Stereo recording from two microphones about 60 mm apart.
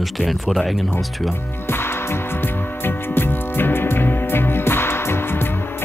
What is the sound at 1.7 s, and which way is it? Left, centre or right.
Music, left.